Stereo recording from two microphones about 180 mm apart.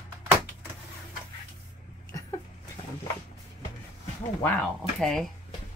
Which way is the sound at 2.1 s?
20° left (ahead or behind).